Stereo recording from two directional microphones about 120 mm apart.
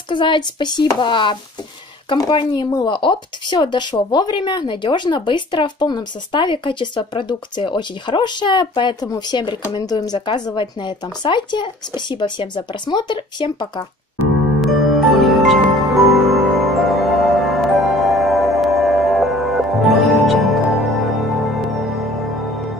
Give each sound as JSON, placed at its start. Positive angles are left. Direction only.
{"t": 0.1, "sound": "speech", "side_deg": 40}
{"t": 14.6, "sound": "music", "side_deg": 0}